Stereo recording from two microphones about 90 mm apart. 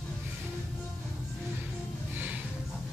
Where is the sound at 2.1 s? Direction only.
20° right (ahead or behind).